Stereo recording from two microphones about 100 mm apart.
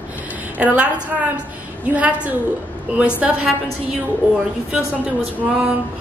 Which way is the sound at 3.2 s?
10° right (ahead or behind).